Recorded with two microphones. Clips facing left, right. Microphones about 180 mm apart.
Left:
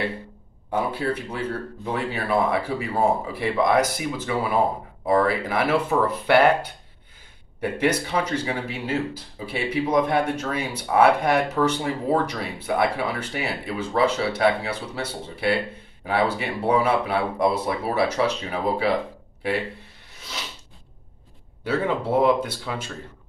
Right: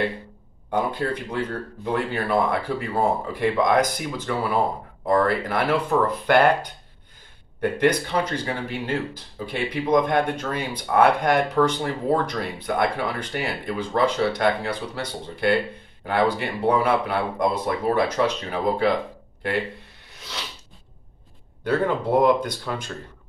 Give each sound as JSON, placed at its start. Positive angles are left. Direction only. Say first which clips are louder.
{"t": 0.7, "sound": "speech", "louder": "even", "side_deg": 5}
{"t": 7.7, "sound": "speech", "louder": "right 1 dB", "side_deg": 5}
{"t": 21.6, "sound": "speech", "louder": "right 2 dB", "side_deg": 5}